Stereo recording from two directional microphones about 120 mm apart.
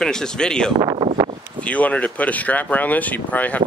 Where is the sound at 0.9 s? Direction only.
45° right (ahead or behind).